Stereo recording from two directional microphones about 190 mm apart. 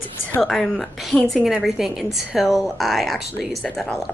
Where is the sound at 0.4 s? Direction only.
Centre (ahead or behind).